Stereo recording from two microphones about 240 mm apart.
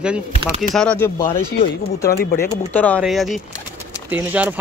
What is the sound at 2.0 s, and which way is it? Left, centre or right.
Speech, left.